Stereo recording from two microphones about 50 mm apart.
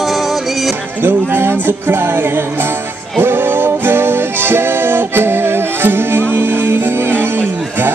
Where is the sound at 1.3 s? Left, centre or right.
Right.